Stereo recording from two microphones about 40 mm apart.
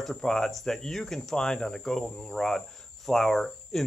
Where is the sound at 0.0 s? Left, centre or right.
Centre.